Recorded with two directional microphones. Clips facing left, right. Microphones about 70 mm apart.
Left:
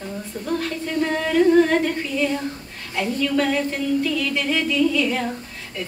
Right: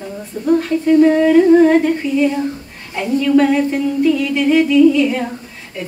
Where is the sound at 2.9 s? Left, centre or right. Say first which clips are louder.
Right 8 dB; centre.